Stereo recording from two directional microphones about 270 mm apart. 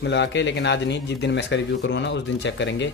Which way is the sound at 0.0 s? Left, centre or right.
Left.